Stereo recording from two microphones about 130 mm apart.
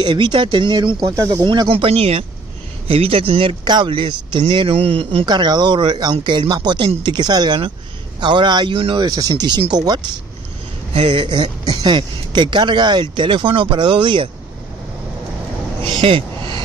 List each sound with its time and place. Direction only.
0.0 s speech: 35° right (ahead or behind)
1.5 s speech: 40° right (ahead or behind)
5.2 s speech: 35° right (ahead or behind)
10.9 s speech: 45° right (ahead or behind)
15.8 s speech: 45° right (ahead or behind)